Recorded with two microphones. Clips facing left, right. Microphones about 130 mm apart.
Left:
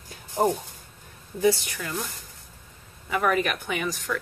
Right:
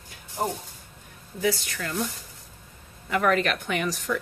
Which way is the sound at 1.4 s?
20° left (ahead or behind).